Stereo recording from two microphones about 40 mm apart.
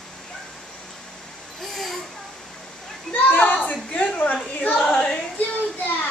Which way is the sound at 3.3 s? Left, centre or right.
Left.